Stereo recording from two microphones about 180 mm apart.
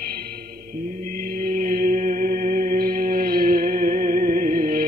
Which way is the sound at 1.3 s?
50° right (ahead or behind).